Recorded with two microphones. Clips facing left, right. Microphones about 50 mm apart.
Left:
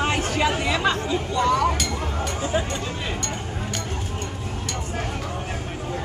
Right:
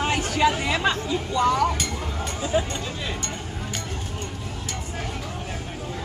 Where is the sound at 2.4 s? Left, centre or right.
Left.